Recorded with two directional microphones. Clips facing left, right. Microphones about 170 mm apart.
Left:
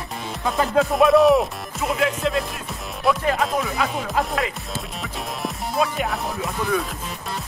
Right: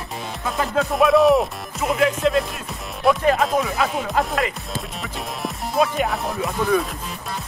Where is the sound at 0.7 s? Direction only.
Centre (ahead or behind).